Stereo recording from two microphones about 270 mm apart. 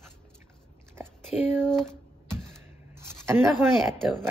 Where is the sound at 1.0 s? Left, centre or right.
Centre.